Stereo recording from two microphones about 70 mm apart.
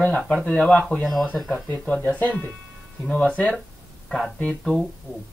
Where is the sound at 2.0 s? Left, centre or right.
Left.